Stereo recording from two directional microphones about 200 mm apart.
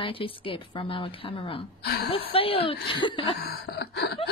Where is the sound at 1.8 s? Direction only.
55° left (ahead or behind).